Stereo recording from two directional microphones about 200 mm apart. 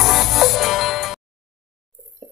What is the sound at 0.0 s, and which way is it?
Music, centre (ahead or behind).